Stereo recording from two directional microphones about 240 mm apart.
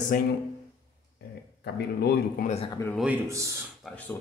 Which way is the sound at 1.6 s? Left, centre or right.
Left.